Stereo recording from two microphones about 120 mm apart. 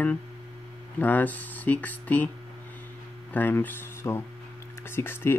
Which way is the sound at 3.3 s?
15° left (ahead or behind).